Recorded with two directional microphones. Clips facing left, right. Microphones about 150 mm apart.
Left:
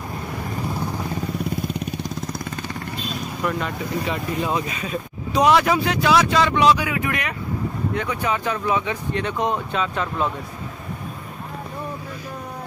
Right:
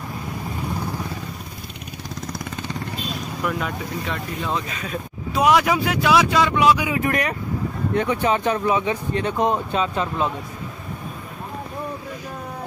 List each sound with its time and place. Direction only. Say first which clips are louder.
3.4 s speech: left 1 dB; centre (ahead or behind)
4.5 s speech: left 2 dB; 10° left (ahead or behind)
5.3 s speech: left 1 dB; 10° right (ahead or behind)
7.0 s speech: right 4 dB; 40° right (ahead or behind)
8.0 s speech: right 5 dB; 25° right (ahead or behind)